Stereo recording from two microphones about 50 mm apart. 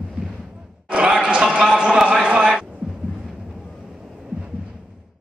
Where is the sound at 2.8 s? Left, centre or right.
Centre.